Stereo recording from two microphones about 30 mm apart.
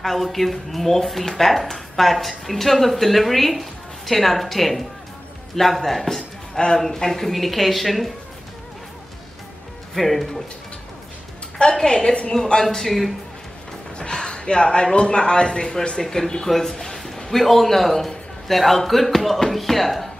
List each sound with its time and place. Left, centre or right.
0.0 s a man's voice: centre
9.9 s speech: centre
11.5 s a woman's voice: left
12.6 s a man's voice: centre
14.1 s a woman's voice: left; by 20.1 s centre